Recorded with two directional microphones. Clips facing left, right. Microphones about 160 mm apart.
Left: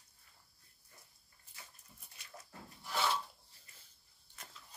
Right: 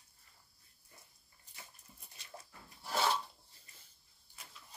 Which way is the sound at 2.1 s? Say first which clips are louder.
Even; 30° right (ahead or behind).